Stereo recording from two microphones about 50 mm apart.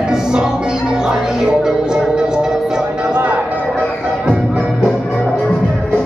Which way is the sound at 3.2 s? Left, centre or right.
Right.